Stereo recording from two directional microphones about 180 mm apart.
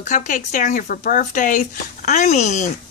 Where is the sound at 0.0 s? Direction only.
45° left (ahead or behind).